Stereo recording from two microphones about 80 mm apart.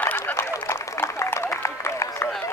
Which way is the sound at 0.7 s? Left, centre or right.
Left.